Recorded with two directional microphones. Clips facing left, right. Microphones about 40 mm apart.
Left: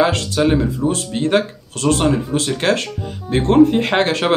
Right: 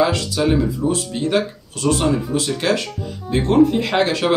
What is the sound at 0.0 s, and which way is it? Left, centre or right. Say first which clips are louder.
Speech: left 2 dB; left.